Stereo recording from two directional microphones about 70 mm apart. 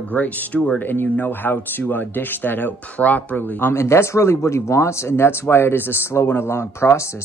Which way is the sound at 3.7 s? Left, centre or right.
Left.